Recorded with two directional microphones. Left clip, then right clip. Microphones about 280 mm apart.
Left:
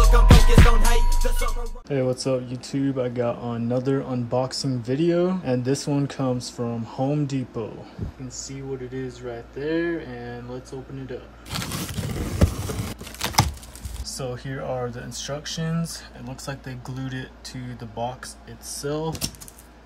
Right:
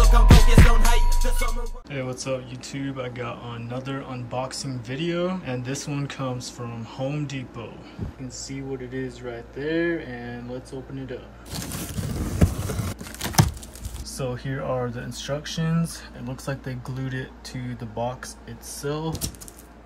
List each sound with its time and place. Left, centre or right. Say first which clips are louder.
0.4 s music: left 1 dB; left
1.4 s speech: even; centre
11.5 s a sound: left 4 dB; centre
14.0 s speech: right 1 dB; centre